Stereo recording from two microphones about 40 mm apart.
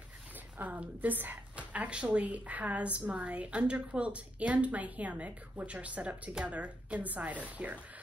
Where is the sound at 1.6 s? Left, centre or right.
Right.